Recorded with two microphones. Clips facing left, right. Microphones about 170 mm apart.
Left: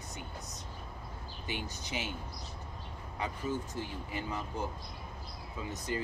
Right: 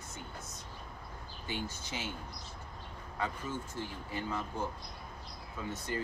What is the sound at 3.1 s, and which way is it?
Speech, 15° left (ahead or behind).